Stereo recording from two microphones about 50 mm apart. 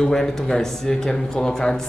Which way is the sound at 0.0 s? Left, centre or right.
Centre.